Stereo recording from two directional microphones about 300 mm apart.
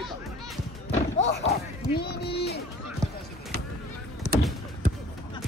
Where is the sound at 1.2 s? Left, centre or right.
Left.